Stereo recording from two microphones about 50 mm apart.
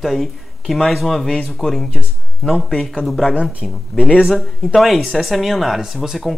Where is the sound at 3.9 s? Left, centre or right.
Centre.